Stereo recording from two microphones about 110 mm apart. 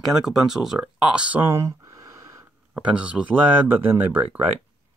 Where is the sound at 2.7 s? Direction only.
10° right (ahead or behind).